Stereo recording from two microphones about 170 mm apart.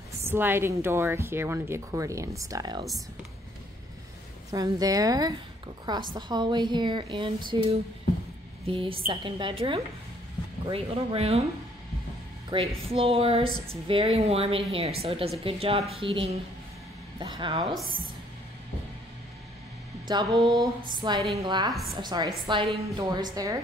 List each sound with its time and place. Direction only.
0.2 s speech: 15° right (ahead or behind)
4.5 s a woman's voice: 20° right (ahead or behind)
8.6 s a woman's voice: 35° right (ahead or behind)
12.4 s a woman's voice: 30° right (ahead or behind)
20.1 s a woman's voice: 25° right (ahead or behind)